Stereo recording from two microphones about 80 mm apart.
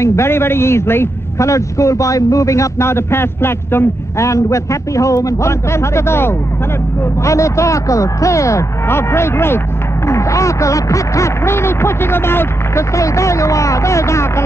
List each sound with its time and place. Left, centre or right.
0.0 s a man's voice: left
12.9 s a man's voice: left